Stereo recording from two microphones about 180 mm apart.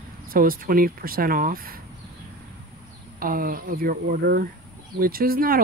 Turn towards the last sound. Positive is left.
turn(degrees=-55)  # may be behind; listen again after turning